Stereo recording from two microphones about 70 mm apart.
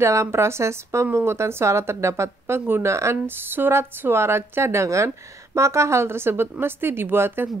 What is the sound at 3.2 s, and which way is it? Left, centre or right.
Speech, right.